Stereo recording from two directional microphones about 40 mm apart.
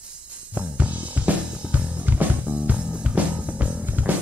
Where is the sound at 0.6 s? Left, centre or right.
Right.